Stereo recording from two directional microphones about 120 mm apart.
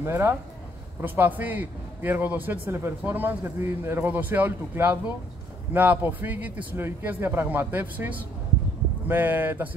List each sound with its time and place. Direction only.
0.0 s speech: 20° right (ahead or behind)